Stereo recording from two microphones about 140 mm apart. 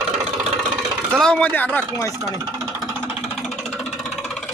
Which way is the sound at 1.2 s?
10° left (ahead or behind).